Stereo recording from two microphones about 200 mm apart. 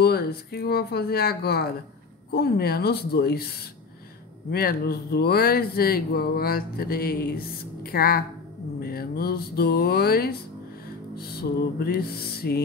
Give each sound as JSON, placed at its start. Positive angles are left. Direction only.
{"t": 0.0, "sound": "speech", "side_deg": 50}
{"t": 4.5, "sound": "speech", "side_deg": 50}
{"t": 11.8, "sound": "speech", "side_deg": 50}